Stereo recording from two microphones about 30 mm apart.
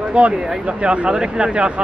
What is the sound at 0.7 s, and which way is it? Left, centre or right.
Speech, right.